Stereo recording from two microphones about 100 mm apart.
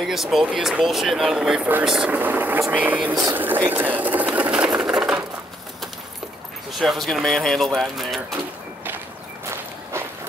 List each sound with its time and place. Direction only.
0.0 s speech: centre (ahead or behind)
2.0 s speech: 20° right (ahead or behind)
4.7 s sewing machine: 10° right (ahead or behind)
6.7 s speech: centre (ahead or behind)